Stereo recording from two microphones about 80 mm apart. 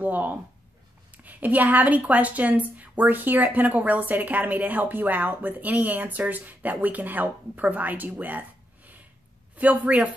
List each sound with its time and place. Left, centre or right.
0.0 s a woman's voice: right